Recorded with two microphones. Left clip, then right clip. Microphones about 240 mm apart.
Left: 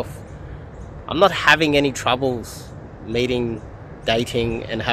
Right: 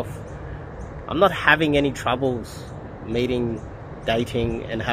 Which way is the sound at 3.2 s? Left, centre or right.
Left.